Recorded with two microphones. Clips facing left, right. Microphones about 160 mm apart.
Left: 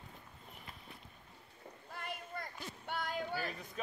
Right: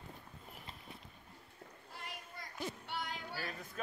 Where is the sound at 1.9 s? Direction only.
55° left (ahead or behind).